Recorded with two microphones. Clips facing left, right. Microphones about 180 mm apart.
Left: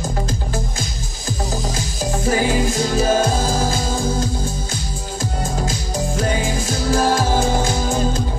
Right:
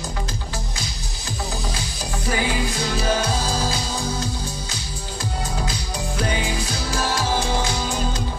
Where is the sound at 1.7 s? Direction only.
45° left (ahead or behind).